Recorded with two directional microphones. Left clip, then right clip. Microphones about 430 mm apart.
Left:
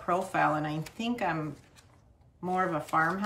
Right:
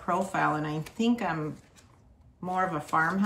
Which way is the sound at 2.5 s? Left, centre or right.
Centre.